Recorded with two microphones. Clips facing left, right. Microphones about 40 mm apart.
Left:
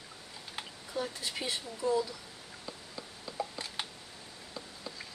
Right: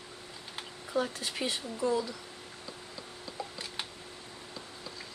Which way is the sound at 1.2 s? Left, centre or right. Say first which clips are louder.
Right 2 dB; right.